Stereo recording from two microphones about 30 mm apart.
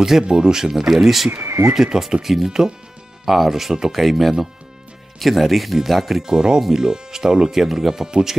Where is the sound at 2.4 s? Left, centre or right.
Centre.